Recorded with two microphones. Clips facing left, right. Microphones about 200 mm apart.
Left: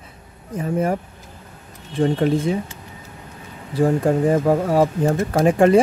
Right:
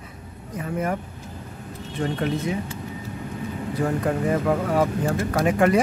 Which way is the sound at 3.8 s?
30° left (ahead or behind).